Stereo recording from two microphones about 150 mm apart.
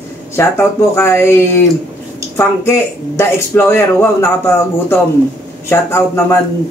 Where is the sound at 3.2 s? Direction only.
15° left (ahead or behind).